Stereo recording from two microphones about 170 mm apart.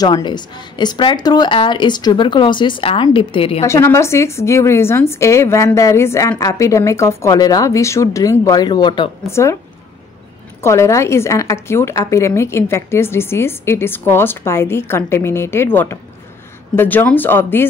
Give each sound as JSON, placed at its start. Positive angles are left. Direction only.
{"t": 0.0, "sound": "a woman's voice", "side_deg": 25}
{"t": 3.6, "sound": "a woman's voice", "side_deg": 15}
{"t": 9.3, "sound": "a woman's voice", "side_deg": 15}
{"t": 10.6, "sound": "a woman's voice", "side_deg": 15}